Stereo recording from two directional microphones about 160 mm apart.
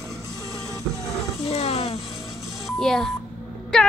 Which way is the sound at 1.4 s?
40° left (ahead or behind).